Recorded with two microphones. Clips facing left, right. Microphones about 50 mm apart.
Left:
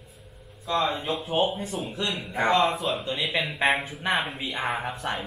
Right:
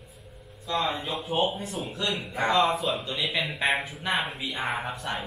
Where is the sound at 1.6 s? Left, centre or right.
Centre.